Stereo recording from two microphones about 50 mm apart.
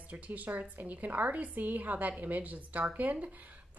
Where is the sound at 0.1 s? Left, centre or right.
Right.